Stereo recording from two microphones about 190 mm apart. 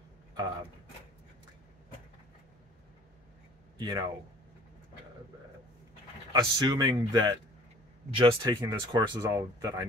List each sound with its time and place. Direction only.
3.7 s speech: 20° right (ahead or behind)
6.3 s speech: 20° right (ahead or behind)